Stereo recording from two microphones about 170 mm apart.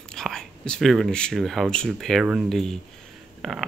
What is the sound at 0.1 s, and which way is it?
Speech, 5° left (ahead or behind).